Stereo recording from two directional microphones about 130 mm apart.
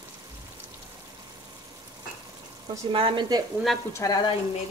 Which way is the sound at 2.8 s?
40° right (ahead or behind).